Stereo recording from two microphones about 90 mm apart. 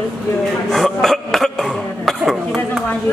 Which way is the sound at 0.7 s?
5° left (ahead or behind).